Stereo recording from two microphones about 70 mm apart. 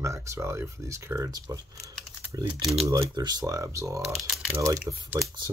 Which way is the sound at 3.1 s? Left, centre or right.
Right.